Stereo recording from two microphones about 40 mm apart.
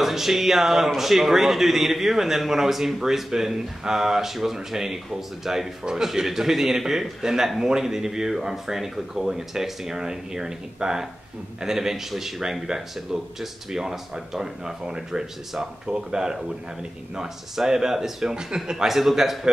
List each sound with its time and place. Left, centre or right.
0.0 s a man's voice: centre
18.9 s a man's voice: centre